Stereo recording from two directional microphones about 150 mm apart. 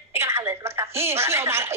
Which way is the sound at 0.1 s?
15° right (ahead or behind).